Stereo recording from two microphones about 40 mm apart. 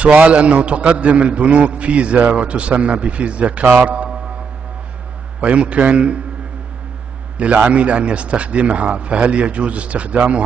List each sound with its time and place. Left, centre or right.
0.0 s a man's voice: right
5.4 s a man's voice: right
7.3 s a man's voice: right